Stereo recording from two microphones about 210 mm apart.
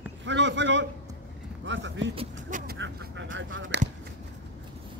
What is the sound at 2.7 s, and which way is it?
Speech, 60° right (ahead or behind).